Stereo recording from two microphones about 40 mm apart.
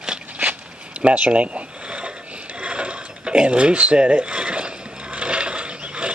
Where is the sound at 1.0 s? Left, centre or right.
Right.